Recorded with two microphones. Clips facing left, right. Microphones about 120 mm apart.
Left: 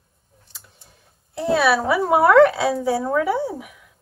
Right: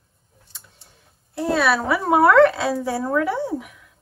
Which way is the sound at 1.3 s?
Centre (ahead or behind).